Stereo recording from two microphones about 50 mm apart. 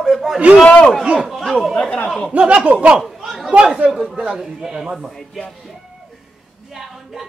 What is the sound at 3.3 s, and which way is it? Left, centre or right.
Chatter, centre.